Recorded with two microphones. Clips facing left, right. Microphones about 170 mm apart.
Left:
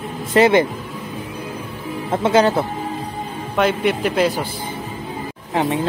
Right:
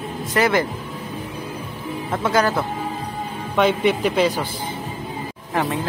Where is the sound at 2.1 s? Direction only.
25° left (ahead or behind).